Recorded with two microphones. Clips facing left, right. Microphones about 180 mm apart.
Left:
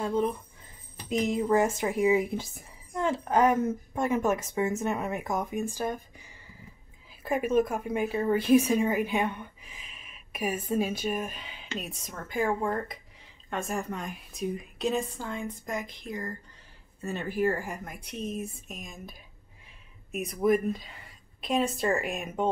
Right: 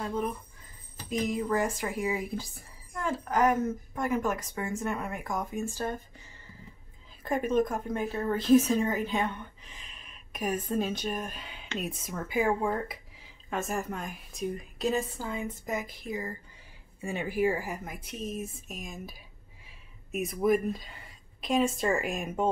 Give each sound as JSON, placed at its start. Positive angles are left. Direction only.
{"t": 1.0, "sound": "a woman's voice", "side_deg": 25}